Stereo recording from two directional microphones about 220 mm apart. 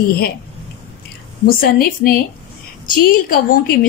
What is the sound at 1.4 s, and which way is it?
Speech, 40° left (ahead or behind).